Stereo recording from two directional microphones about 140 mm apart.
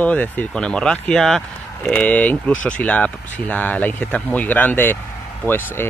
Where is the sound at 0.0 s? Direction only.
10° left (ahead or behind).